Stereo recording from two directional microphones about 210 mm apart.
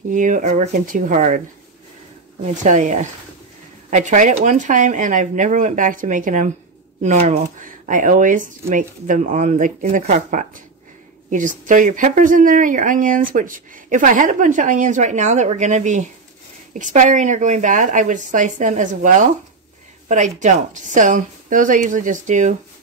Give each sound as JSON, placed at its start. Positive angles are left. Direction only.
{"t": 0.1, "sound": "speech", "side_deg": -35}
{"t": 2.5, "sound": "speech", "side_deg": -35}